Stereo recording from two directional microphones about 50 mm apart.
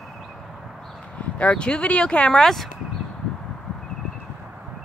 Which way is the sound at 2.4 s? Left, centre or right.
Centre.